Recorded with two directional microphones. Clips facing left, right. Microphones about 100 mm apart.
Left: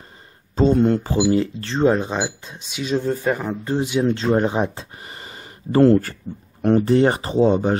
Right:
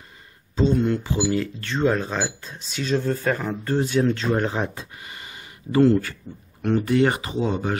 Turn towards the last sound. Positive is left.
turn(degrees=30)  # may be behind; listen again after turning